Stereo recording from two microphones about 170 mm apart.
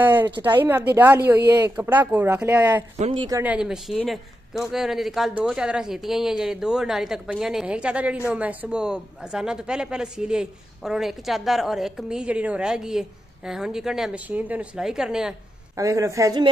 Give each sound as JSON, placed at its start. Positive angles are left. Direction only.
{"t": 0.0, "sound": "speech", "side_deg": -10}
{"t": 15.7, "sound": "a woman's voice", "side_deg": -20}